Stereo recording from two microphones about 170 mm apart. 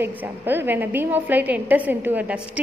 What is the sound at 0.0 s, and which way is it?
A woman's voice, 10° right (ahead or behind).